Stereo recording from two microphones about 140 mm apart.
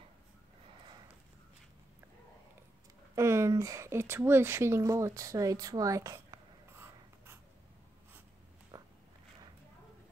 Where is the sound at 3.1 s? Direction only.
20° right (ahead or behind).